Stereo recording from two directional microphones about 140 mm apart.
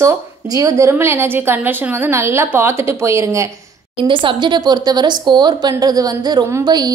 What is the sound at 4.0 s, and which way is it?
Speech, 35° right (ahead or behind).